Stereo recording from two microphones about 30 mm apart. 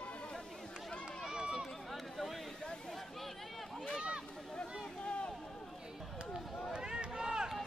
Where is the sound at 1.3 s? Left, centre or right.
Right.